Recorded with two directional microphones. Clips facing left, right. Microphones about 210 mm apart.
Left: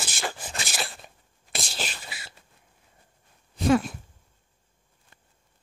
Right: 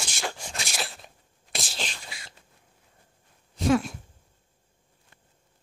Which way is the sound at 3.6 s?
Centre (ahead or behind).